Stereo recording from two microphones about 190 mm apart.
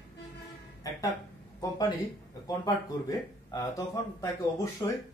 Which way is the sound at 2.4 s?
20° left (ahead or behind).